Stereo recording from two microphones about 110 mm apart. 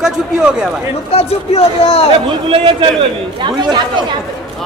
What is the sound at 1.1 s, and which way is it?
Speech, 65° left (ahead or behind).